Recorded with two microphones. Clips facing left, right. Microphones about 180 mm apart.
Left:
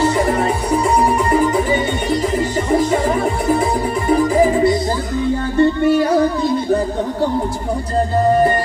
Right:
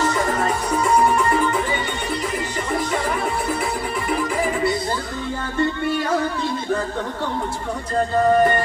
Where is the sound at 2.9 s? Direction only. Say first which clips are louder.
Left 6 dB; 25° left (ahead or behind).